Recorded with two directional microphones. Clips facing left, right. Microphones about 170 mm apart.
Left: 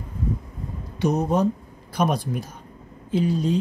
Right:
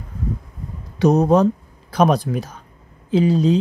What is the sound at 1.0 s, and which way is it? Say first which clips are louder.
Speech: right 7 dB; 75° right (ahead or behind).